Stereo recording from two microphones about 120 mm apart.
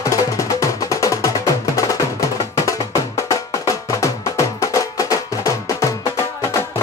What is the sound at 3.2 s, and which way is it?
Music, 25° left (ahead or behind).